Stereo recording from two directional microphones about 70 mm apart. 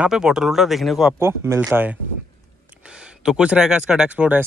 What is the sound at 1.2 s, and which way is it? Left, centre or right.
Speech, right.